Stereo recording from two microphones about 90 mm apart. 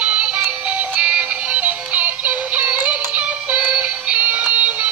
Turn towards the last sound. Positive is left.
turn(degrees=-15)  # may be behind; listen again after turning